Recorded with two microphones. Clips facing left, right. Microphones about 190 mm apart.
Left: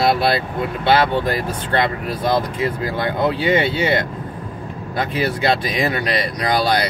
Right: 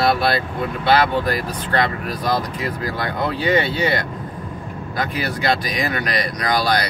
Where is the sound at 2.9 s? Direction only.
20° left (ahead or behind).